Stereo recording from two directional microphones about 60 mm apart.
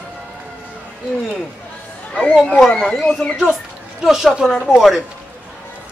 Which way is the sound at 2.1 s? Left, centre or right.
Centre.